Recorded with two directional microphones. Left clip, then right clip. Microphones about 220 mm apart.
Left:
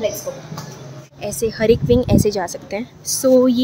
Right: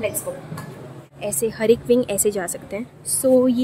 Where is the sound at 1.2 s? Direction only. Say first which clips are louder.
Left 2 dB; centre (ahead or behind).